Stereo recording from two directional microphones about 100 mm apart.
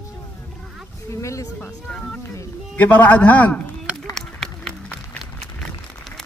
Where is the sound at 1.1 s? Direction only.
30° left (ahead or behind).